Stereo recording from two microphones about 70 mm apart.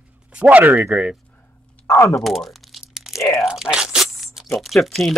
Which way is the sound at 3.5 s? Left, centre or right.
Centre.